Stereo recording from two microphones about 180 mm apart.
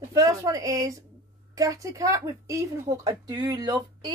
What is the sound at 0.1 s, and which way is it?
Speech, 20° right (ahead or behind).